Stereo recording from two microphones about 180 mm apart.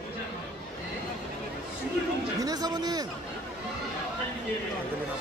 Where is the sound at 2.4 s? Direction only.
20° right (ahead or behind).